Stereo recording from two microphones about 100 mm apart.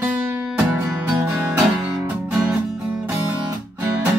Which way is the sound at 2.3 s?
20° right (ahead or behind).